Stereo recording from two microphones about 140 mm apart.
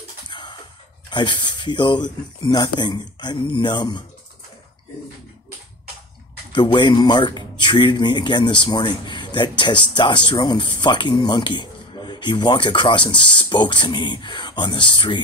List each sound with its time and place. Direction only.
0.3 s music: 30° left (ahead or behind)
1.1 s speech: 35° left (ahead or behind)
6.5 s speech: 35° left (ahead or behind)